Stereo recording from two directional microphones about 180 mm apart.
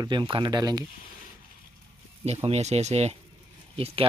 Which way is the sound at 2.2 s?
35° right (ahead or behind).